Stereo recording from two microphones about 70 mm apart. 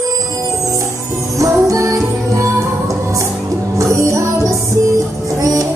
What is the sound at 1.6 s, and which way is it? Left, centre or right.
Music, right.